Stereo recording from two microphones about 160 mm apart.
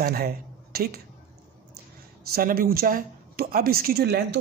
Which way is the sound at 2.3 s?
65° right (ahead or behind).